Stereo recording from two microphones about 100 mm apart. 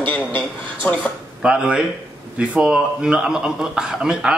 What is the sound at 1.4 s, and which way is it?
A man's voice, 10° right (ahead or behind).